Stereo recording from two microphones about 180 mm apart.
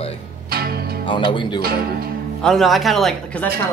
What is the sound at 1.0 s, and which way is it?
Speech, 25° left (ahead or behind).